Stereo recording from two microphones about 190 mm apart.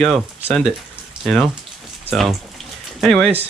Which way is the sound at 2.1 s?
Centre (ahead or behind).